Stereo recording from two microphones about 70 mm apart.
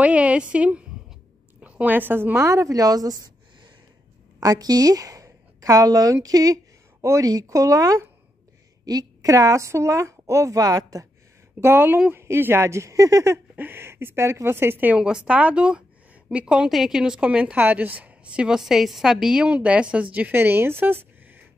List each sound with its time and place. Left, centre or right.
0.0 s a woman's voice: centre
2.4 s a woman's voice: right
6.2 s a sound: right
7.2 s speech: right
7.5 s a woman's voice: right
11.6 s speech: right
13.6 s speech: right
14.9 s a woman's voice: centre
18.6 s a woman's voice: centre; by 21.4 s right